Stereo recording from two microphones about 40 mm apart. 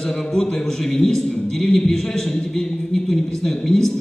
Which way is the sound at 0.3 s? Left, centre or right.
Centre.